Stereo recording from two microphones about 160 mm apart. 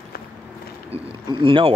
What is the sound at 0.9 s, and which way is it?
Speech, 30° right (ahead or behind).